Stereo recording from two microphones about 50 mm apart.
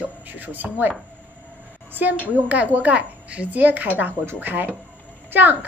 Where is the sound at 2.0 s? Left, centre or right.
Right.